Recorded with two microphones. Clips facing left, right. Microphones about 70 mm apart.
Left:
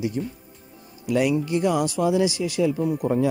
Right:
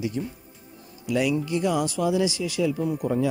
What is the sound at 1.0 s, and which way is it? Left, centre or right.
Speech, left.